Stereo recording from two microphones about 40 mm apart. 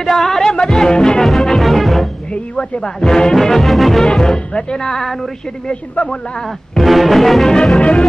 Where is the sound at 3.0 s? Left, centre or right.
Centre.